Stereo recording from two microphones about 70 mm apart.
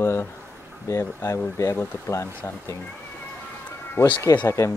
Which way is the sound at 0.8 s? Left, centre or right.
Left.